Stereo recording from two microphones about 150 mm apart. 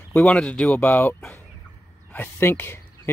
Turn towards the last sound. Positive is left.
turn(degrees=15)  # may be behind; listen again after turning